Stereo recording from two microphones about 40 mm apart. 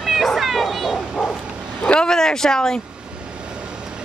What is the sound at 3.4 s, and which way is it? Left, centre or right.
Vehicle, right.